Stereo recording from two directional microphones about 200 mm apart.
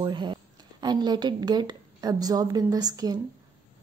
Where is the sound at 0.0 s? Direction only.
20° right (ahead or behind).